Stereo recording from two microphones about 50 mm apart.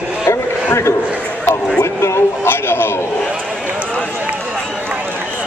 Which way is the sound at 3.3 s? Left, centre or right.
Right.